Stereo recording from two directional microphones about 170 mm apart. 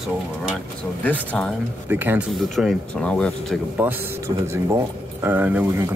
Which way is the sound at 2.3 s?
Centre (ahead or behind).